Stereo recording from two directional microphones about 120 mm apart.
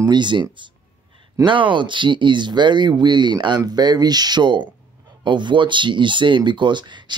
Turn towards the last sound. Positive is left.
turn(degrees=-40)  # may be behind; listen again after turning